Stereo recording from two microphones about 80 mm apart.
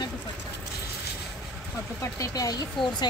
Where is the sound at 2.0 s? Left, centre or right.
Left.